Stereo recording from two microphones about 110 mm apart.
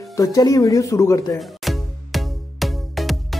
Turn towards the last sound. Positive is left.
turn(degrees=0)  # may be behind; listen again after turning